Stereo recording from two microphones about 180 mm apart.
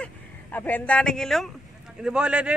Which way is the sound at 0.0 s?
10° left (ahead or behind).